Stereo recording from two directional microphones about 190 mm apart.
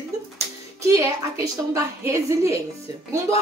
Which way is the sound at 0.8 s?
15° right (ahead or behind).